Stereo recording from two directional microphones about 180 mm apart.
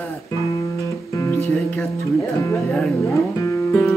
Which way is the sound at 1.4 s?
15° left (ahead or behind).